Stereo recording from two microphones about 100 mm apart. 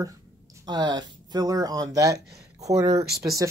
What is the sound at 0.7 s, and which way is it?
Speech, 45° right (ahead or behind).